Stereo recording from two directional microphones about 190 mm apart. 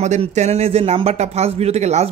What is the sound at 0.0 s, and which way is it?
A man's voice, 35° right (ahead or behind).